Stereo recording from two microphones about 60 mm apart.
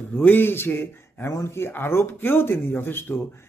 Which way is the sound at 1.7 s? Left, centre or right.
Left.